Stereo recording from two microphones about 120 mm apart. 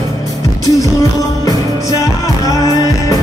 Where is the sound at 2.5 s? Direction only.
30° left (ahead or behind).